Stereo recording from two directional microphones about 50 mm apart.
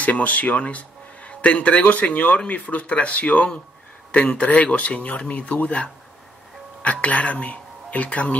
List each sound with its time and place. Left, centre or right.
0.0 s speech: left